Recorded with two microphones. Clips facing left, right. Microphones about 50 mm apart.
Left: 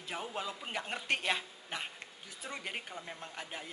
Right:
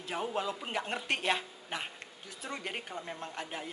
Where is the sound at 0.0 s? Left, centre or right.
Centre.